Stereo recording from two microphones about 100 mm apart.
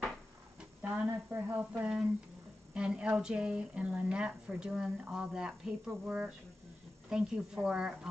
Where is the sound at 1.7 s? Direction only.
10° right (ahead or behind).